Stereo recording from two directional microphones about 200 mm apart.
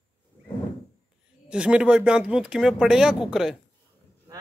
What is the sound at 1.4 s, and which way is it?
Speech, 5° right (ahead or behind).